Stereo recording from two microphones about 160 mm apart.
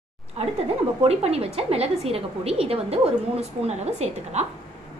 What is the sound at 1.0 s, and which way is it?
A woman's voice, 40° right (ahead or behind).